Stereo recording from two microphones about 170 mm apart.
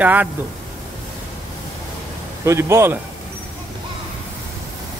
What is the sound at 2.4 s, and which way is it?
Speech, 15° right (ahead or behind).